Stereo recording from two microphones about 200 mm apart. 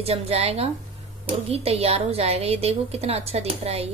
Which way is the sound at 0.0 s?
30° right (ahead or behind).